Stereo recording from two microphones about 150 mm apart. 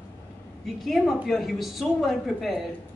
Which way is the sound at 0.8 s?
Centre (ahead or behind).